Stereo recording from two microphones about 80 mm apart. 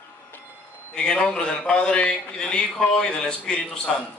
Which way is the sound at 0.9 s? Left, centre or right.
Centre.